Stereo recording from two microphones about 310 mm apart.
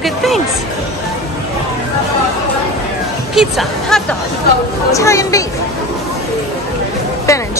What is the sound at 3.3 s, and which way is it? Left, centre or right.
Speech, centre.